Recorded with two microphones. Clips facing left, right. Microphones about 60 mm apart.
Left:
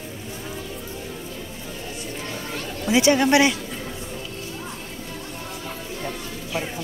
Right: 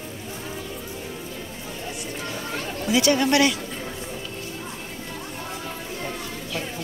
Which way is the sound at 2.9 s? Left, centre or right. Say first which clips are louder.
Left 3 dB; left.